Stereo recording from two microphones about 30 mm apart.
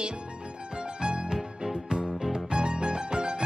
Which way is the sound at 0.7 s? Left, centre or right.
Right.